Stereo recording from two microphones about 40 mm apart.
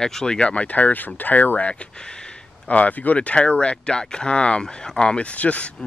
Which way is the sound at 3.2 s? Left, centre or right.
Left.